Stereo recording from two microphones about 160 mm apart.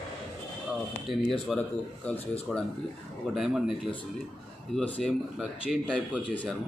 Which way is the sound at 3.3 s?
Centre (ahead or behind).